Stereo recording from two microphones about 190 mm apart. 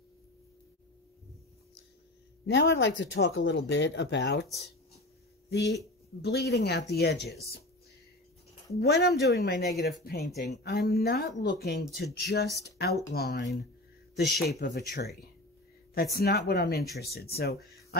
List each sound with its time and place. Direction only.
2.4 s speech: 75° left (ahead or behind)
5.5 s speech: 60° left (ahead or behind)
8.7 s speech: 60° left (ahead or behind)